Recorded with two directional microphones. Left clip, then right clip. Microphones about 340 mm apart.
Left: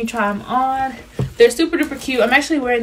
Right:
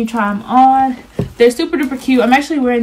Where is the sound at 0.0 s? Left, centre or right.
Centre.